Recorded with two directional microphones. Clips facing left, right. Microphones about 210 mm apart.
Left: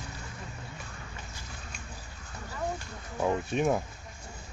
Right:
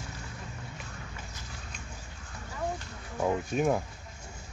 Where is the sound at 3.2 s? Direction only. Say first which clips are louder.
Even; 5° right (ahead or behind).